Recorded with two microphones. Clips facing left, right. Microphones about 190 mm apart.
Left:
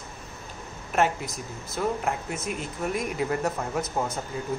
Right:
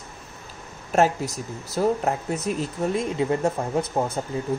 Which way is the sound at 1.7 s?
40° right (ahead or behind).